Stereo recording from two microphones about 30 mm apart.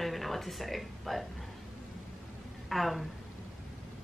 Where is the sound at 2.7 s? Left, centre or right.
Centre.